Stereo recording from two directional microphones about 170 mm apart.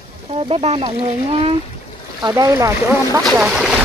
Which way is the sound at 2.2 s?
20° right (ahead or behind).